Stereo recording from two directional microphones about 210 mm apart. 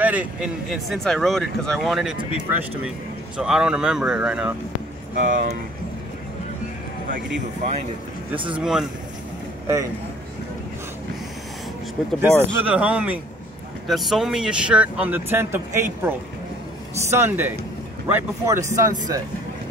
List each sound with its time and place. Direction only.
0.0 s speech: 5° right (ahead or behind)
5.1 s speech: 40° right (ahead or behind)
8.5 s speech: centre (ahead or behind)
12.2 s speech: 10° right (ahead or behind)